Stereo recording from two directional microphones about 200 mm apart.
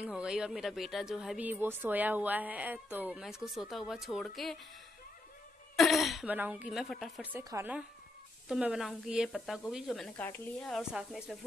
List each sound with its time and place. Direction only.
0.0 s speech: 5° right (ahead or behind)
5.8 s speech: centre (ahead or behind)
7.3 s speech: 15° right (ahead or behind)